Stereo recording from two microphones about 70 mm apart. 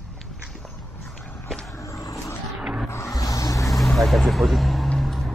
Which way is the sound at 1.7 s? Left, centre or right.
Left.